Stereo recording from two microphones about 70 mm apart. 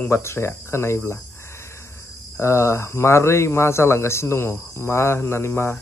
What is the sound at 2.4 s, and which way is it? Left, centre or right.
Speech, left.